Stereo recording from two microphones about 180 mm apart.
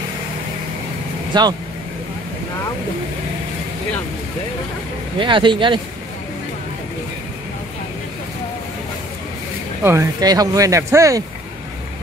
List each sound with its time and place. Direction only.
1.3 s speech: 25° right (ahead or behind)
5.2 s speech: 25° right (ahead or behind)
9.8 s speech: 20° right (ahead or behind)